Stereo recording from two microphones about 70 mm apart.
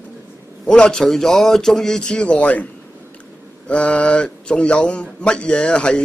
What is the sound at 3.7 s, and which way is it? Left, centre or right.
A man's voice, centre.